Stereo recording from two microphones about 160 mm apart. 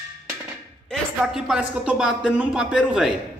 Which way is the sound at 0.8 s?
5° right (ahead or behind).